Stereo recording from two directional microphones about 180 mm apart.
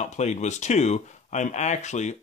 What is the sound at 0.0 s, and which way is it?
Speech, 40° left (ahead or behind).